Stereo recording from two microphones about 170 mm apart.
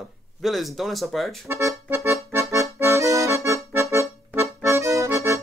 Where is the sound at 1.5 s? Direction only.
15° right (ahead or behind).